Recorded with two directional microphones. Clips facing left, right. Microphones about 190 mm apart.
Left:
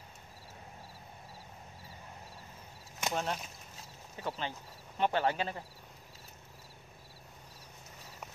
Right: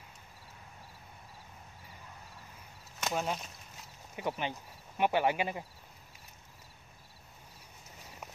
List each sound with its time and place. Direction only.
3.1 s speech: 5° right (ahead or behind)
4.2 s speech: 15° right (ahead or behind)